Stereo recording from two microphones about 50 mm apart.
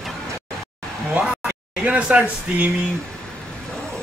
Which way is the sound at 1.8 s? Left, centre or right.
Right.